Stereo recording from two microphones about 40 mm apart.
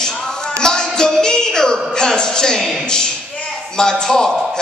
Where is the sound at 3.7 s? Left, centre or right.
Centre.